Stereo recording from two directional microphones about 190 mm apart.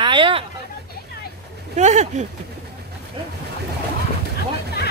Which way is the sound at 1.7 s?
40° right (ahead or behind).